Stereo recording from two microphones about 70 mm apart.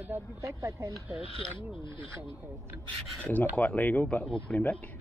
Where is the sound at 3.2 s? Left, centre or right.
Left.